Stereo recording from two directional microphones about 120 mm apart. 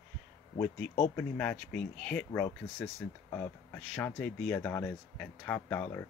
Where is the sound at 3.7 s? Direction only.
5° left (ahead or behind).